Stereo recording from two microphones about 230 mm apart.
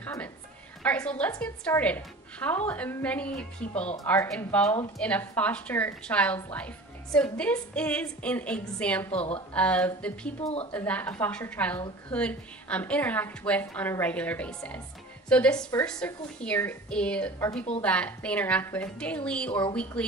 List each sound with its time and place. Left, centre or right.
0.0 s a sound: centre
0.8 s a woman's voice: centre
10.4 s a woman's voice: left
10.7 s a woman's voice: centre